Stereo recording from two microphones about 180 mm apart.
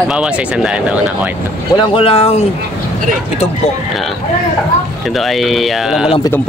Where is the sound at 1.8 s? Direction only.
30° left (ahead or behind).